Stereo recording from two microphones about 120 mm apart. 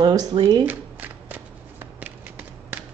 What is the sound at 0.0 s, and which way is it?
Speech, 35° right (ahead or behind).